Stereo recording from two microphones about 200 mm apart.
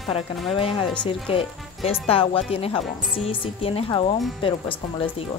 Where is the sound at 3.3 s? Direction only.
30° left (ahead or behind).